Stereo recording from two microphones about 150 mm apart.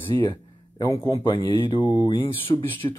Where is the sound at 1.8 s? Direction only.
15° right (ahead or behind).